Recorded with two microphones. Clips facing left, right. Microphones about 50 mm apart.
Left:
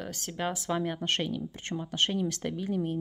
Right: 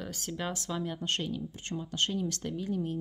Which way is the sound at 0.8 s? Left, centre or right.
Left.